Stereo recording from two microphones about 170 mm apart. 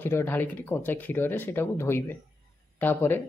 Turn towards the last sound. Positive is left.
turn(degrees=10)  # may be behind; listen again after turning